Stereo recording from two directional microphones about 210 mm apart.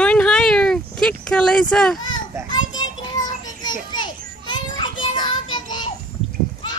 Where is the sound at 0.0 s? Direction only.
5° left (ahead or behind).